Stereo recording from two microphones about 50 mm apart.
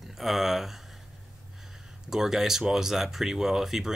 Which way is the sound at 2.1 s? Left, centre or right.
Centre.